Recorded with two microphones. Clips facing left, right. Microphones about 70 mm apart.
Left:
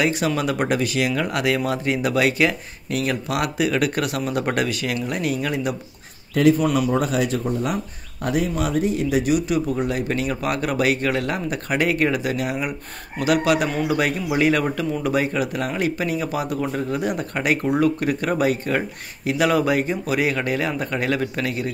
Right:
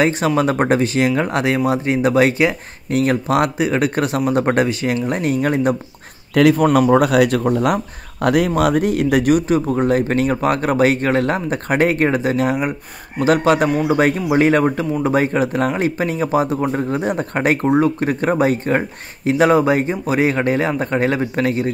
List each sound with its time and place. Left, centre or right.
0.4 s speech: right
6.9 s speech: right